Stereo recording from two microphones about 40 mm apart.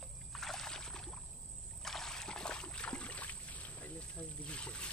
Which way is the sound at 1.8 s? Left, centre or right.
Centre.